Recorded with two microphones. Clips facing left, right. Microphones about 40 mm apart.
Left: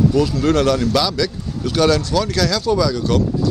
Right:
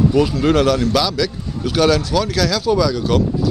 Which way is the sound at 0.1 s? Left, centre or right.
Centre.